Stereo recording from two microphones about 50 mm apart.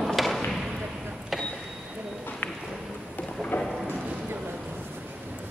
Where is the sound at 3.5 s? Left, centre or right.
Left.